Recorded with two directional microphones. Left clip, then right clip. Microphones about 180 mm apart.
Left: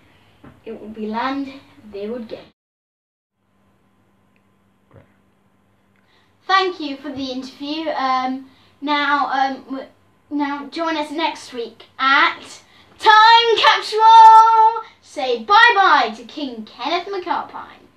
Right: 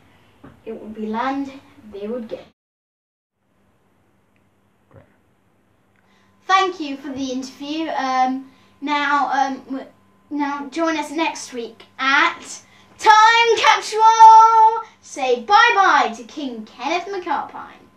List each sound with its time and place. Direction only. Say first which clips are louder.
1.9 s speech: even; 10° left (ahead or behind)
4.9 s a sound: right 1 dB; centre (ahead or behind)
6.4 s child singing: even; 20° right (ahead or behind)
10.3 s a child's voice: even; 20° right (ahead or behind)
12.9 s child singing: left 2 dB; 15° right (ahead or behind)